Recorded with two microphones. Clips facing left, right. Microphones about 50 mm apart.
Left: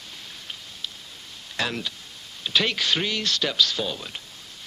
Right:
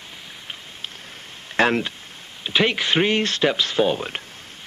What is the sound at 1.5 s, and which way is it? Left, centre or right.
Speech, right.